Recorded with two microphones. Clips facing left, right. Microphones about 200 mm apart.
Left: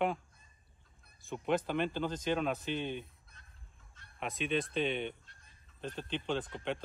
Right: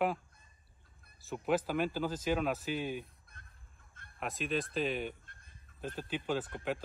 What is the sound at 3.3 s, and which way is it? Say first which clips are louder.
Honk: right 5 dB; 55° right (ahead or behind).